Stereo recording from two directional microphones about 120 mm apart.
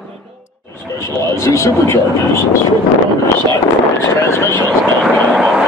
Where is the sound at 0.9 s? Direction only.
25° left (ahead or behind).